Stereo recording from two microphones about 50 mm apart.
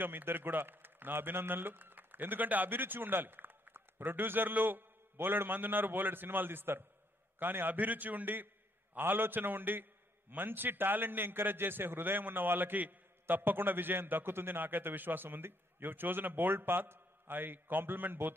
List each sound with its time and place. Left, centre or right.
0.0 s a man's voice: right
14.5 s a man's voice: right